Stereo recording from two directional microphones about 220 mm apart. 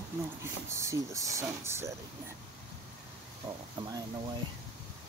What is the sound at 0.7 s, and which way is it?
Speech, 15° right (ahead or behind).